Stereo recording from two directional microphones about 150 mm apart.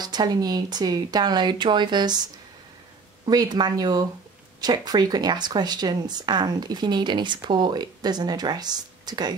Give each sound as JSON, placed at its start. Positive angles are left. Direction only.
{"t": 0.0, "sound": "speech", "side_deg": -25}
{"t": 3.3, "sound": "speech", "side_deg": -25}